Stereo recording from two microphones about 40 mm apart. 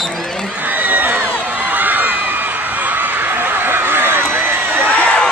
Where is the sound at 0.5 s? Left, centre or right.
Right.